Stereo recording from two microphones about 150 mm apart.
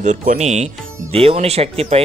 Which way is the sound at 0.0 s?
55° right (ahead or behind).